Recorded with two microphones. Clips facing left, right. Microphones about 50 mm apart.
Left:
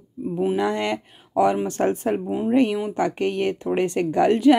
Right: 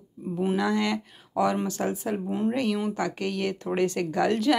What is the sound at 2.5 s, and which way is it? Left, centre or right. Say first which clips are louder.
A woman's voice: left 9 dB; left.